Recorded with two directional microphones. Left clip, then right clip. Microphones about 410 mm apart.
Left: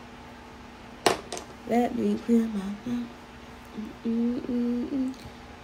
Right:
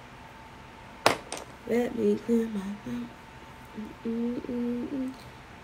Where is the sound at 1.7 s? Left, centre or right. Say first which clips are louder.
Even; centre.